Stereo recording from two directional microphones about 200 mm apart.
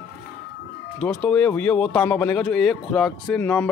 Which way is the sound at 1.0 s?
5° left (ahead or behind).